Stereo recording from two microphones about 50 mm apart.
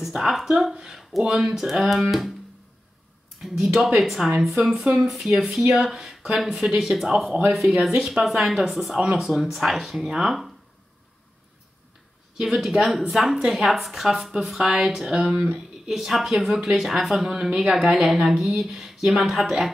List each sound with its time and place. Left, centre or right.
0.0 s speech: centre
3.7 s speech: centre
4.8 s speech: centre
5.1 s speech: centre
7.9 s speech: centre
8.2 s speech: centre
12.4 s speech: centre; by 15.6 s right
15.9 s speech: centre